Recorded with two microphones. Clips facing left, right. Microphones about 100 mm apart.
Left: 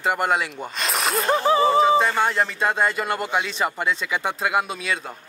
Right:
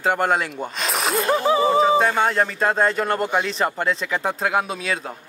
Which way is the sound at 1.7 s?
15° right (ahead or behind).